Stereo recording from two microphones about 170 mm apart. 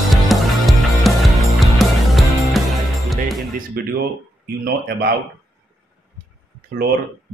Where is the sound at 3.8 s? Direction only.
65° right (ahead or behind).